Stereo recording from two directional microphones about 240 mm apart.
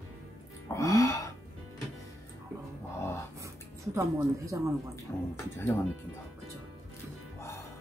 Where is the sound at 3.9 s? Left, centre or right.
Centre.